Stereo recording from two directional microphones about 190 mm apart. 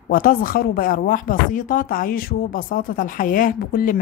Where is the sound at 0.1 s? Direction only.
50° left (ahead or behind).